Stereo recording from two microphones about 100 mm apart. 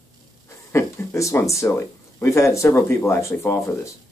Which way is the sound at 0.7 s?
30° left (ahead or behind).